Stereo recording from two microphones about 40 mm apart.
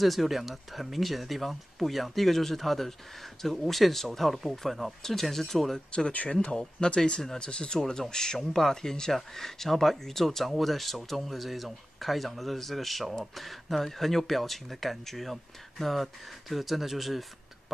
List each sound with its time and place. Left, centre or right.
0.0 s speech: centre
5.9 s speech: left
7.8 s speech: centre